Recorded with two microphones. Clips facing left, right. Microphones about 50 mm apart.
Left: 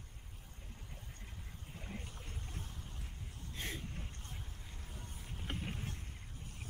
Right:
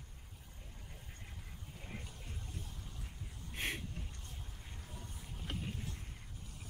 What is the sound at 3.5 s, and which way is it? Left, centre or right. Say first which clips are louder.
Vehicle: right 4 dB; right.